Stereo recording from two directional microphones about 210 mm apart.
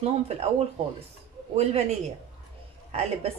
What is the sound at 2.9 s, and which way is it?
Speech, 30° right (ahead or behind).